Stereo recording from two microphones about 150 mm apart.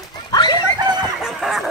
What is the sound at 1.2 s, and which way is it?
Chicken, centre (ahead or behind).